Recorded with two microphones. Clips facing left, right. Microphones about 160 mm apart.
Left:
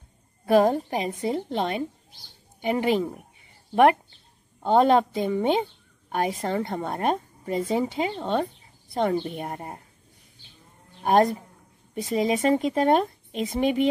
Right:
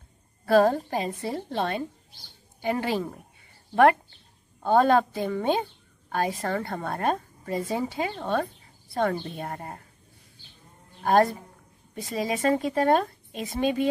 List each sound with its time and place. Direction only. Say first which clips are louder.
0.5 s a woman's voice: left 1 dB; 15° left (ahead or behind)
4.6 s a woman's voice: left 1 dB; 20° left (ahead or behind)
11.0 s a woman's voice: left 1 dB; 20° left (ahead or behind)